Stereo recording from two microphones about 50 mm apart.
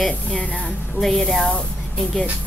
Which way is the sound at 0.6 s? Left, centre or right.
Centre.